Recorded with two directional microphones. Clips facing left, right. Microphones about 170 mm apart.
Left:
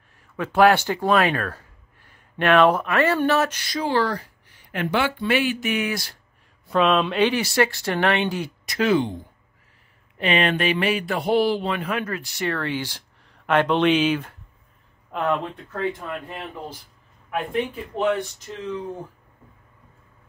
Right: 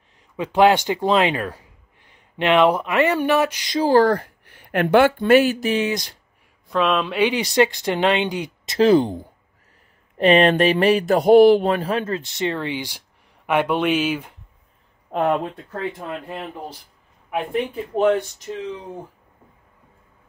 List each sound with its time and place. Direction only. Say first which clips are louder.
0.4 s speech: right 1 dB; 15° right (ahead or behind)
3.9 s speech: right 8 dB; 50° right (ahead or behind); by 6.1 s 20° right (ahead or behind)
6.7 s speech: left 1 dB; centre (ahead or behind); by 8.7 s 15° right (ahead or behind)
8.7 s speech: right 5 dB; 35° right (ahead or behind); by 11.7 s 55° right (ahead or behind)
11.7 s speech: right 4 dB; 30° right (ahead or behind); by 14.3 s 10° right (ahead or behind)
15.0 s speech: right 4 dB; 35° right (ahead or behind)
17.9 s speech: right 5 dB; 40° right (ahead or behind)